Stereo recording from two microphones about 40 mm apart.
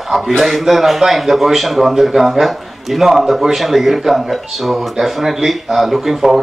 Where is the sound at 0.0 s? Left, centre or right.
Centre.